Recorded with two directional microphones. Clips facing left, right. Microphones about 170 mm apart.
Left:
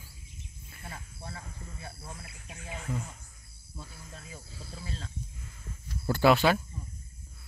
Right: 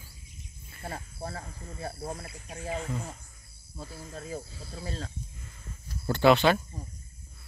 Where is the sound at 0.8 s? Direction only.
40° right (ahead or behind).